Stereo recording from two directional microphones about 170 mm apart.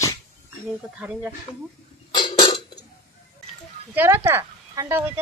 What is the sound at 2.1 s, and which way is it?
Cough, 25° left (ahead or behind).